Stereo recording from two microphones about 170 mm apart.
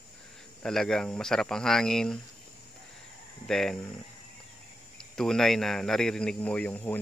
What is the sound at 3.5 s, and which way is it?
Speech, 5° left (ahead or behind).